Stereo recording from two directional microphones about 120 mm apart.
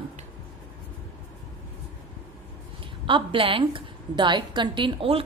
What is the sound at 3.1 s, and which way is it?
A woman's voice, 45° right (ahead or behind).